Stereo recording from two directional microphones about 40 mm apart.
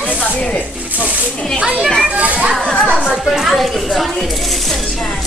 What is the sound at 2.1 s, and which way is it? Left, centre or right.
Speech, right.